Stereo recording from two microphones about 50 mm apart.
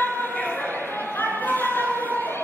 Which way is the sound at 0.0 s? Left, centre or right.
Left.